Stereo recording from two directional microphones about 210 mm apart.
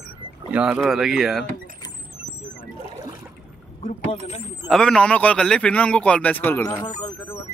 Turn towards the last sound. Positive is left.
turn(degrees=15)  # may be behind; listen again after turning